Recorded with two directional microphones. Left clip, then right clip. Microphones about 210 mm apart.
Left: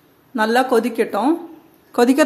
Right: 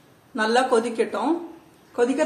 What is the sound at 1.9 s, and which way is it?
Speech, 50° left (ahead or behind).